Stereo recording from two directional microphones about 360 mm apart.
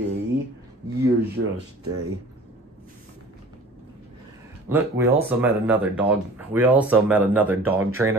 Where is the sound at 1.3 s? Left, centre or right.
Right.